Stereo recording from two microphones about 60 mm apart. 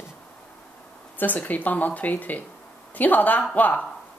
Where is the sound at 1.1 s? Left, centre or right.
Left.